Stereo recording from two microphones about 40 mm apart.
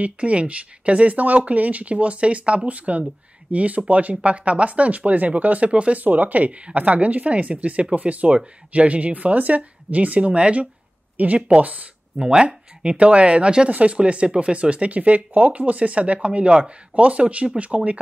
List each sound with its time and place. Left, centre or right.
0.0 s speech: right
5.9 s speech: right
11.1 s speech: right
13.7 s speech: right
13.9 s speech: right